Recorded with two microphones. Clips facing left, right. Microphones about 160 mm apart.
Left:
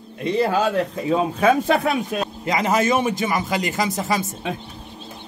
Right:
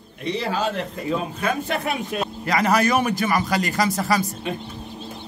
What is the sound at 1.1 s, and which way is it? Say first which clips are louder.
Speech: left 7 dB; 90° left.